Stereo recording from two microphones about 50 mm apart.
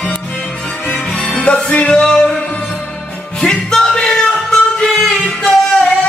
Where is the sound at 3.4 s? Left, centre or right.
Centre.